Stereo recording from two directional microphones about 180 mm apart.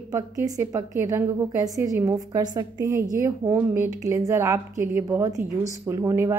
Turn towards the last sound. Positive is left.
turn(degrees=-15)  # may be behind; listen again after turning